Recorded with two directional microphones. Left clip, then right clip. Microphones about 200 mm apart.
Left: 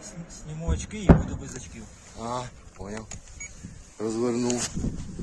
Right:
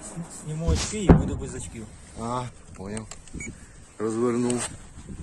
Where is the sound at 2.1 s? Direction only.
5° left (ahead or behind).